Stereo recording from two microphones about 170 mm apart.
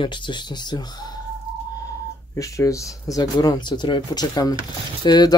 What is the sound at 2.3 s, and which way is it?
Speech, 20° left (ahead or behind).